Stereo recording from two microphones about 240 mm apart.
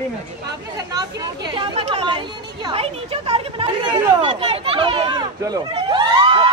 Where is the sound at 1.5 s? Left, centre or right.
Right.